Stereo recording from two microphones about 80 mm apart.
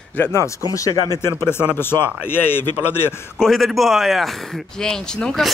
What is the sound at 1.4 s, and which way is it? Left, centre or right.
A man's voice, left.